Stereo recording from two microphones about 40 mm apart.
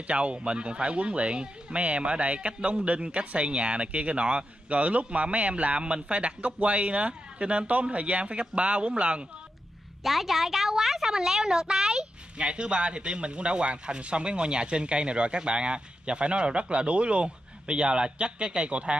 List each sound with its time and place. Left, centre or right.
0.0 s speech: right
10.0 s speech: centre; by 18.9 s right